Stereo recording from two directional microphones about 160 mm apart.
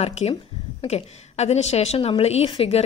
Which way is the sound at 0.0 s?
40° left (ahead or behind).